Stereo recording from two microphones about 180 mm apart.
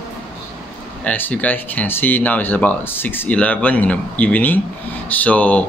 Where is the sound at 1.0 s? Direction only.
10° left (ahead or behind).